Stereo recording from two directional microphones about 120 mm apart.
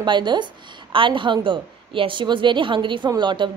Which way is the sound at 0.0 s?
40° right (ahead or behind).